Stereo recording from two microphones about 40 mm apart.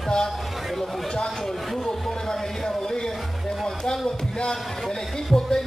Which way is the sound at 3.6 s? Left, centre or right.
Centre.